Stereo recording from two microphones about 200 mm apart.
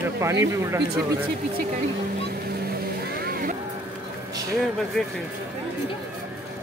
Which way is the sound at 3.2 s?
50° right (ahead or behind).